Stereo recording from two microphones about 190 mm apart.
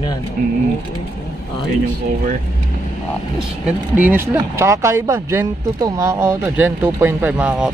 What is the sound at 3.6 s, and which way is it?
Speech, 10° right (ahead or behind).